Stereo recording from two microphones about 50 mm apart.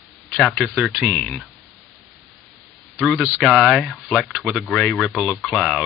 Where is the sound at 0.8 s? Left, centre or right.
Centre.